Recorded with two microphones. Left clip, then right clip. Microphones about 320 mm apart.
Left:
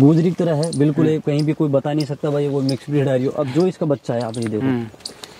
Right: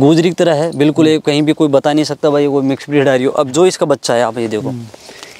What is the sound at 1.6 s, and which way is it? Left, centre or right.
Speech, right.